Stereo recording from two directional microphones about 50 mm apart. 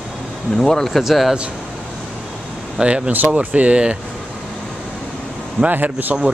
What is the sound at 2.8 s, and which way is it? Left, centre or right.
Speech, centre.